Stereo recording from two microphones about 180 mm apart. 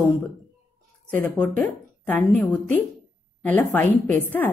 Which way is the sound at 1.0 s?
10° left (ahead or behind).